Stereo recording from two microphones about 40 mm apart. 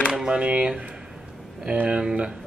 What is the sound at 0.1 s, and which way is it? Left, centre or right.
Speech, right.